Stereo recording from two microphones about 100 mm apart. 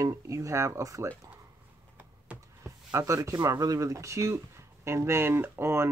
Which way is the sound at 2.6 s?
30° right (ahead or behind).